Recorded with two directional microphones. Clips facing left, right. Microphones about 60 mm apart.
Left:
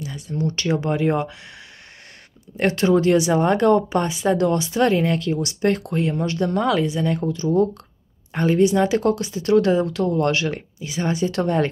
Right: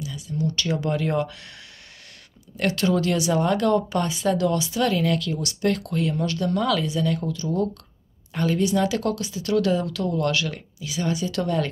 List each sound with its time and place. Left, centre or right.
0.0 s a sound: left
0.6 s speech: left
2.5 s speech: left